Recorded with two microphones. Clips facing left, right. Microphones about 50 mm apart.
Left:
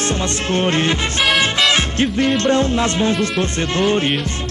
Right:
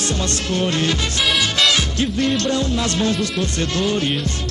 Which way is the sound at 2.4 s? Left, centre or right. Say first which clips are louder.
Left 4 dB; left.